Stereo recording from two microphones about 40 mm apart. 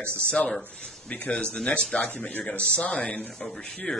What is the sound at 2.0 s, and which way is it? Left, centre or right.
Speech, left.